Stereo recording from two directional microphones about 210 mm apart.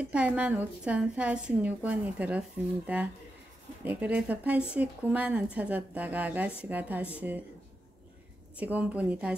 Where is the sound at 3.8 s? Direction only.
10° right (ahead or behind).